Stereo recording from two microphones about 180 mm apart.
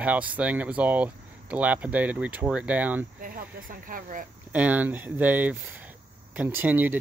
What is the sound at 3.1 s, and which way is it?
Speech, 50° right (ahead or behind).